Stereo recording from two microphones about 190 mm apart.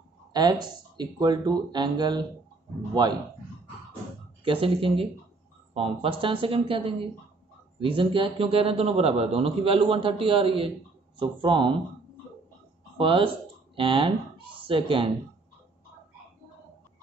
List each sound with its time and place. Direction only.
0.3 s a man's voice: 20° right (ahead or behind)
4.5 s a man's voice: 30° right (ahead or behind)
13.0 s a man's voice: 30° right (ahead or behind)